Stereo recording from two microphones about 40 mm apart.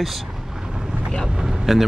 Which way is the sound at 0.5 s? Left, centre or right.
Centre.